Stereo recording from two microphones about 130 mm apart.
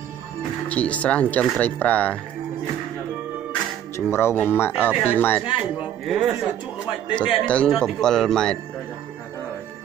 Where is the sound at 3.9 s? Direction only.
20° left (ahead or behind).